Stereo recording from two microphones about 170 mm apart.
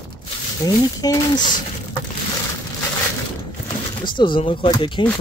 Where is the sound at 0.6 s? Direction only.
20° left (ahead or behind).